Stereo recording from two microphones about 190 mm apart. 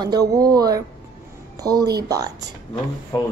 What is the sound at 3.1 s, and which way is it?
Speech, 20° left (ahead or behind).